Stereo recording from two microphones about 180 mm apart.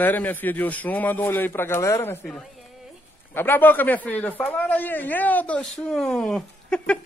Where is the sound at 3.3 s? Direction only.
10° left (ahead or behind).